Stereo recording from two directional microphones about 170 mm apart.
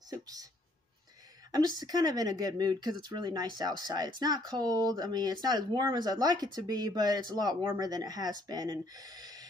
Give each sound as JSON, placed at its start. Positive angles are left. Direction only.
{"t": 0.1, "sound": "speech", "side_deg": -20}
{"t": 1.8, "sound": "speech", "side_deg": -25}